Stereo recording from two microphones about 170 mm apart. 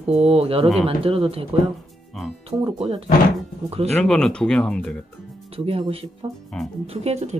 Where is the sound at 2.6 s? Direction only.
35° right (ahead or behind).